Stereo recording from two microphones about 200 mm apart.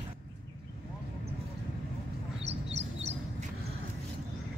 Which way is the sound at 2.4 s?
35° right (ahead or behind).